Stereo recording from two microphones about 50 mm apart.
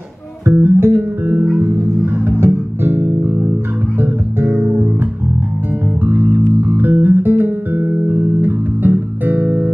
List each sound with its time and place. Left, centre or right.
0.6 s music: right
2.2 s music: right
4.5 s music: centre
6.0 s music: right